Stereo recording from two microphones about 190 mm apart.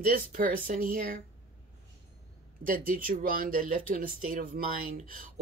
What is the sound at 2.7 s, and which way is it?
Speech, 45° right (ahead or behind).